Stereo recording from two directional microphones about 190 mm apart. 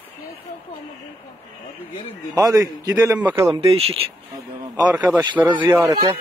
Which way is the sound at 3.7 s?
30° right (ahead or behind).